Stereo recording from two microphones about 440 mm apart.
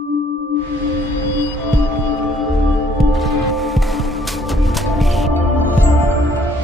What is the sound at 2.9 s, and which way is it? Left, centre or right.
Music, centre.